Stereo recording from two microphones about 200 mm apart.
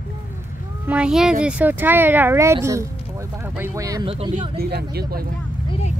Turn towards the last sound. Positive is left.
turn(degrees=30)  # may be behind; listen again after turning